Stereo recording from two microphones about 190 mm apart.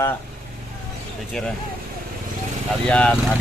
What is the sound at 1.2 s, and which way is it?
Speech, centre (ahead or behind).